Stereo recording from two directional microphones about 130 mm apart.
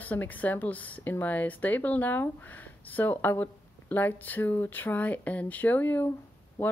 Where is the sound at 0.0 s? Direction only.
15° left (ahead or behind).